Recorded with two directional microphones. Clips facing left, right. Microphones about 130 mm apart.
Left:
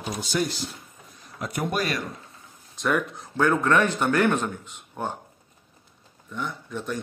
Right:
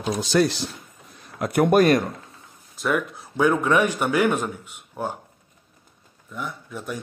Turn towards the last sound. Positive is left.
turn(degrees=-5)  # may be behind; listen again after turning